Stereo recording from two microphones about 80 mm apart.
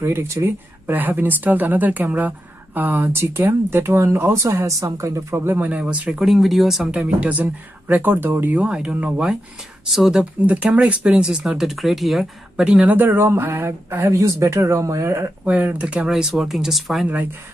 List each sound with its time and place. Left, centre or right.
0.0 s speech: right
0.8 s speech: right
5.6 s speech: centre
6.0 s speech: centre
6.9 s speech: centre
10.4 s speech: centre
12.8 s speech: right
15.4 s speech: centre
16.1 s speech: centre